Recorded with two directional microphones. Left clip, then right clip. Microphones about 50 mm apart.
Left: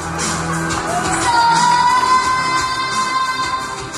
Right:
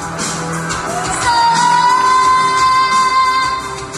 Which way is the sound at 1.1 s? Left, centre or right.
Right.